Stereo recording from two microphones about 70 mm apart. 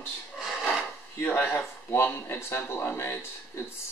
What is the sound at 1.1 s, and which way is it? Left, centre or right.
Speech, left.